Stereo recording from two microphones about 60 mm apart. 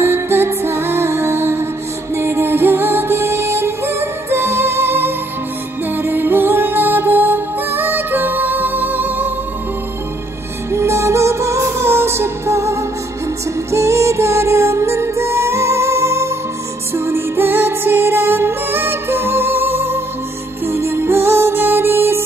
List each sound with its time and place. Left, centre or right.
0.0 s music: right
10.7 s music: right